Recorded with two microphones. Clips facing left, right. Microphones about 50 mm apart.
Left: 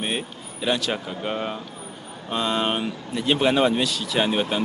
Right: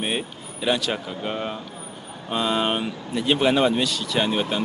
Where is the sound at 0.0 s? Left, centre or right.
Centre.